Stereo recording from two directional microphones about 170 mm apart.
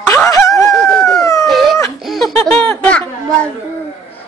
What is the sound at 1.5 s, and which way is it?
Baby cry, centre (ahead or behind).